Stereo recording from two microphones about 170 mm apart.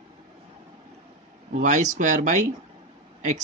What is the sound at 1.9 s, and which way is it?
Speech, 45° right (ahead or behind).